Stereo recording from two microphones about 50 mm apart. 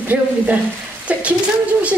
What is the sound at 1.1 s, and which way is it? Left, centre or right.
Speech, right.